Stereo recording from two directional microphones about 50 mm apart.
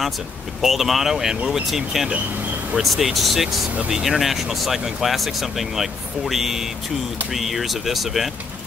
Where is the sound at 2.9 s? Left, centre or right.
Centre.